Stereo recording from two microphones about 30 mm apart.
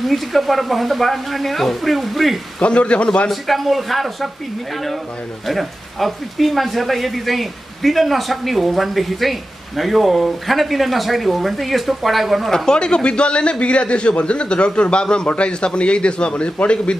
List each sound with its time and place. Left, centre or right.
0.0 s speech: centre
2.6 s a man's voice: left
3.3 s speech: centre
5.5 s speech: centre
12.4 s speech: centre
12.7 s a man's voice: left